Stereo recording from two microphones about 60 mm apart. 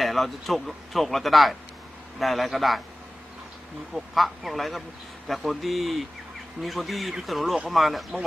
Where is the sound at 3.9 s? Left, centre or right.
Centre.